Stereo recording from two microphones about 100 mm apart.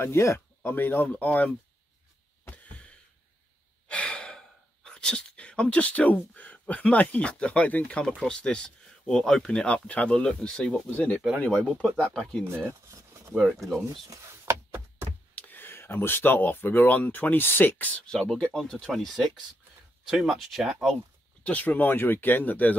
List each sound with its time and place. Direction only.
0.0 s speech: 25° left (ahead or behind)
2.5 s a sound: 15° left (ahead or behind)
3.9 s speech: 15° left (ahead or behind)
12.4 s a sound: 25° right (ahead or behind)
15.3 s speech: 20° left (ahead or behind); by 20.9 s centre (ahead or behind)
21.5 s speech: 15° left (ahead or behind)